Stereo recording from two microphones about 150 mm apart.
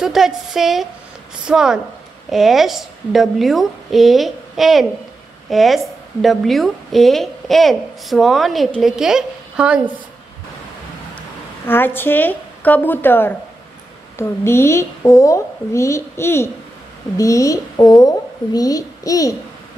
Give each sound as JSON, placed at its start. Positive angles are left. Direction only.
{"t": 0.0, "sound": "a woman's voice", "side_deg": -5}
{"t": 11.1, "sound": "a woman's voice", "side_deg": 15}